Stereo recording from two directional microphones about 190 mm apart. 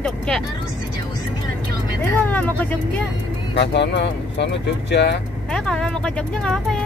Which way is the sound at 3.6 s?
65° left (ahead or behind).